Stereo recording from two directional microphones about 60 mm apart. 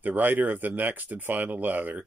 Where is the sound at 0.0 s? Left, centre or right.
Right.